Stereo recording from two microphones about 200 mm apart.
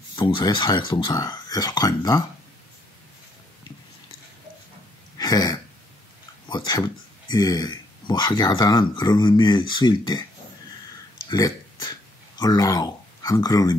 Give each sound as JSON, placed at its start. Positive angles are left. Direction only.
{"t": 0.1, "sound": "speech", "side_deg": 25}
{"t": 5.1, "sound": "throat clearing", "side_deg": 20}
{"t": 6.5, "sound": "speech", "side_deg": 20}
{"t": 11.2, "sound": "a sound", "side_deg": 20}